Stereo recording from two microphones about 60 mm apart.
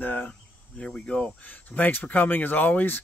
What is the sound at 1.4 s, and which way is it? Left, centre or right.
Speech, left.